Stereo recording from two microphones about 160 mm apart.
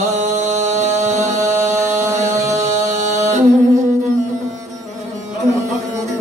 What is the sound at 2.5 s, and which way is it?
Music, 45° right (ahead or behind).